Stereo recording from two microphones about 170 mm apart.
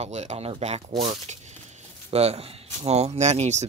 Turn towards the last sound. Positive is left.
turn(degrees=-40)  # may be behind; listen again after turning